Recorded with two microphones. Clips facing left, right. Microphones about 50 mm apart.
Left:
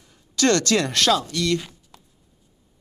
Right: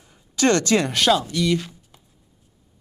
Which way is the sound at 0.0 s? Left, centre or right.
Right.